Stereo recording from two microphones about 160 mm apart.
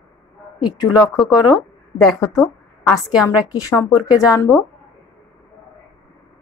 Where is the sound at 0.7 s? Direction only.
25° left (ahead or behind).